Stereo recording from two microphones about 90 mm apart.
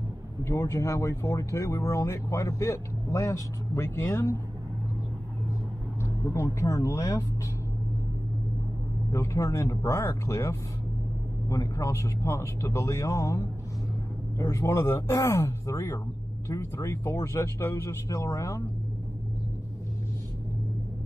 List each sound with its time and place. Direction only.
0.4 s speech: 35° left (ahead or behind)
5.9 s speech: 30° left (ahead or behind)
9.1 s speech: 30° left (ahead or behind)